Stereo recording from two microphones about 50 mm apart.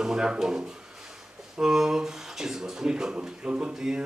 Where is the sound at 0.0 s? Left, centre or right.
Centre.